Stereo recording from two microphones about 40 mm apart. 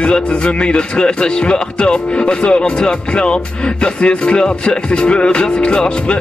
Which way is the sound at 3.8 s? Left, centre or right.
Left.